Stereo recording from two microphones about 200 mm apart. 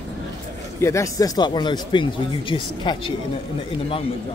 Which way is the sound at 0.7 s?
15° left (ahead or behind).